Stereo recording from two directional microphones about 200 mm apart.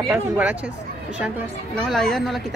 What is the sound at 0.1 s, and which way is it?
Speech, 5° right (ahead or behind).